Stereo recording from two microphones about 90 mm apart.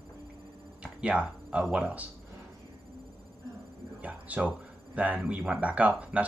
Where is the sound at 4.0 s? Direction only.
15° right (ahead or behind).